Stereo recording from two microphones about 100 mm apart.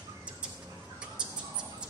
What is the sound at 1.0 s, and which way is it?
Bird, 10° right (ahead or behind).